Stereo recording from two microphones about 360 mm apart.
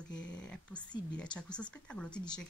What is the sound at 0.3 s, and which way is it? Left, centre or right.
Speech, centre.